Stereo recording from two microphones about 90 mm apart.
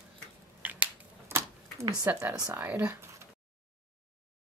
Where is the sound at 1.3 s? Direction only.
30° right (ahead or behind).